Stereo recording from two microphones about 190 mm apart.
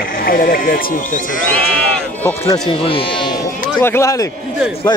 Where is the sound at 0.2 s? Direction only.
50° left (ahead or behind).